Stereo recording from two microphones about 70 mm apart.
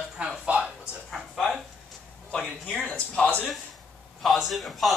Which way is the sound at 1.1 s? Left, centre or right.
Centre.